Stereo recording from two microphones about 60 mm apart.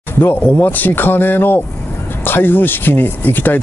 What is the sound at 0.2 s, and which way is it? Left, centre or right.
Speech, left.